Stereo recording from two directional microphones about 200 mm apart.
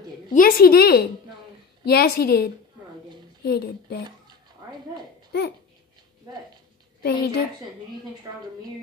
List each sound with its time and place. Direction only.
0.3 s a woman's voice: 45° left (ahead or behind)
7.0 s a woman's voice: 55° left (ahead or behind)